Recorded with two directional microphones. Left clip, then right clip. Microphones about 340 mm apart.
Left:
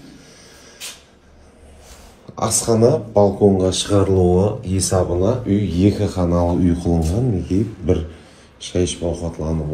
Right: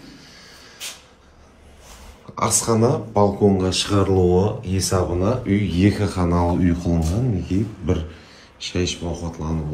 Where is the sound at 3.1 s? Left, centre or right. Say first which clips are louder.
Left 3 dB; right.